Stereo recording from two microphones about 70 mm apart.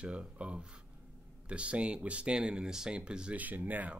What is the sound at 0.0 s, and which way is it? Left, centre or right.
Speech, centre.